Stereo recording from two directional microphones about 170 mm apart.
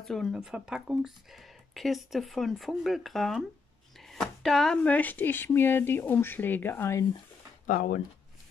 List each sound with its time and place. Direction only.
0.0 s speech: centre (ahead or behind)
7.6 s speech: 55° left (ahead or behind)